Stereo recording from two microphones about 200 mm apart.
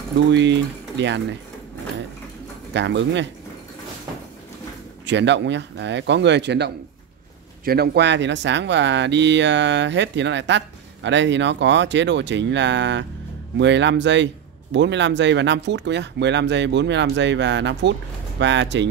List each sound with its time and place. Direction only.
0.3 s speech: 65° right (ahead or behind)
2.7 s speech: 65° right (ahead or behind)
5.0 s speech: 60° right (ahead or behind)